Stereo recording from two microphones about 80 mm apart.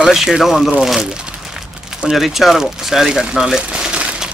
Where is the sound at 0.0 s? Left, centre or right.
Centre.